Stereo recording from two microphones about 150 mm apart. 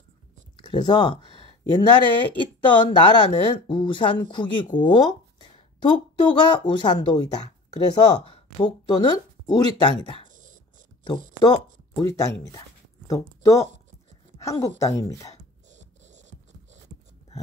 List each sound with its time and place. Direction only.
0.6 s a woman's voice: 30° left (ahead or behind)
10.3 s beatboxing: 60° right (ahead or behind)
11.4 s a woman's voice: 30° left (ahead or behind)
15.7 s rodents: 50° right (ahead or behind)